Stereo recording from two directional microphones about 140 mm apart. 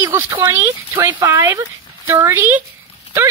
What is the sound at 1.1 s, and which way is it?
A woman's voice, 25° right (ahead or behind).